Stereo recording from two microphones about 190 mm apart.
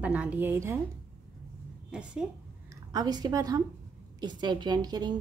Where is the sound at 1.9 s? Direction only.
5° right (ahead or behind).